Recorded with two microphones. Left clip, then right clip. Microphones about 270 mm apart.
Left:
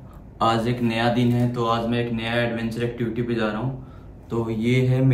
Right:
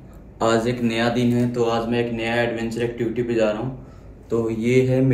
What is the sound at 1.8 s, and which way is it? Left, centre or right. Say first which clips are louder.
Speech: right 2 dB; centre.